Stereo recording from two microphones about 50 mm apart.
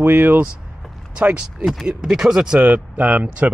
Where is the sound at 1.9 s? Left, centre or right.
Centre.